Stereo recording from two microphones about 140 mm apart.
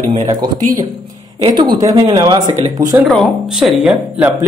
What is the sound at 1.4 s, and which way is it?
Speech, 35° right (ahead or behind).